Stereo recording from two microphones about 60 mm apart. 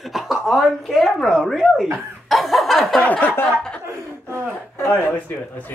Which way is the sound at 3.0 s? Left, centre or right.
Left.